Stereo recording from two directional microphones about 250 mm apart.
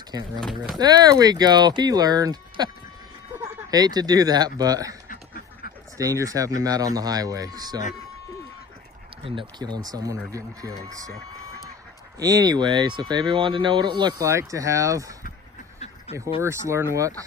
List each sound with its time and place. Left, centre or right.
0.4 s speech: centre
0.7 s speech: centre
3.7 s speech: centre
5.0 s duck: left
5.9 s speech: centre
9.2 s speech: centre
12.2 s speech: centre
16.3 s speech: centre